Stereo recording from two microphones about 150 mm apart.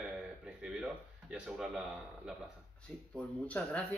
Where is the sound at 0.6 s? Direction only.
5° right (ahead or behind).